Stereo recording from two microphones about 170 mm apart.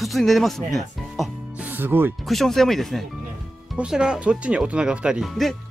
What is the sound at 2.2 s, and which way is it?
Speech, centre (ahead or behind).